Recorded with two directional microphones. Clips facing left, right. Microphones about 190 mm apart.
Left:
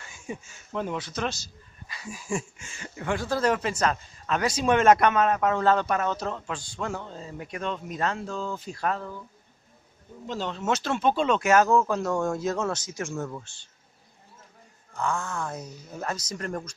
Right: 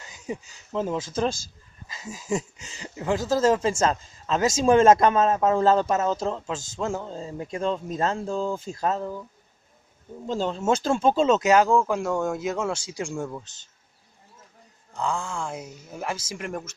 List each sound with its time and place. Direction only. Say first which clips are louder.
0.2 s speech: right 4 dB; 25° right (ahead or behind)
10.5 s speech: right 3 dB; 30° right (ahead or behind)
15.0 s speech: right 1 dB; 15° right (ahead or behind)